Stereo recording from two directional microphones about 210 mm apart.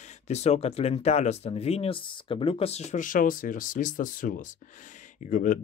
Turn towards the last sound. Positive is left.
turn(degrees=35)  # may be behind; listen again after turning